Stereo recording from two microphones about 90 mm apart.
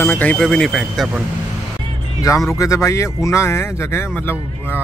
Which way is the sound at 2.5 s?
35° left (ahead or behind).